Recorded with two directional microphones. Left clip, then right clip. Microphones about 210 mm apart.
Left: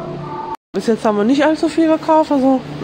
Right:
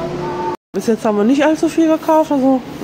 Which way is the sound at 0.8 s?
Centre (ahead or behind).